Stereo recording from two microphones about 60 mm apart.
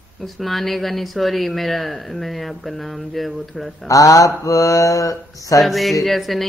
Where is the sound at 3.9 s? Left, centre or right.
Left.